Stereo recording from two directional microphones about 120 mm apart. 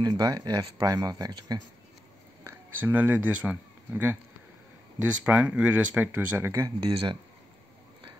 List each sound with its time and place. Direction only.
0.0 s speech: 35° right (ahead or behind)
2.8 s speech: 15° right (ahead or behind)
5.2 s speech: 15° right (ahead or behind)
6.8 s speech: 40° right (ahead or behind)